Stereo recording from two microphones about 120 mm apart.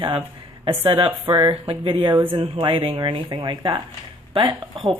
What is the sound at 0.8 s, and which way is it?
Speech, 45° right (ahead or behind).